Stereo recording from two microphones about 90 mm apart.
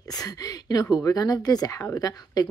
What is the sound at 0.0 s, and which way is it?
Speech, 45° left (ahead or behind).